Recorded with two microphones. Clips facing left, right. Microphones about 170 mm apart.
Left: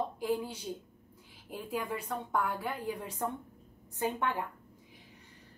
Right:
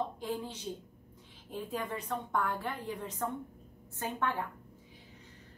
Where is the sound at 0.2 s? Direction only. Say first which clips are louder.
Left 4 dB; 10° left (ahead or behind).